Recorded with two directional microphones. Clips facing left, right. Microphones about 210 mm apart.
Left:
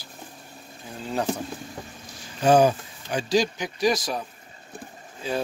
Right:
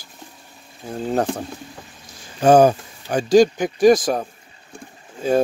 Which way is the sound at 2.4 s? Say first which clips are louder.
Right 5 dB; 50° right (ahead or behind).